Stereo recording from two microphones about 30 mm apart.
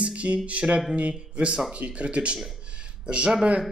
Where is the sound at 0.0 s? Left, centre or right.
Right.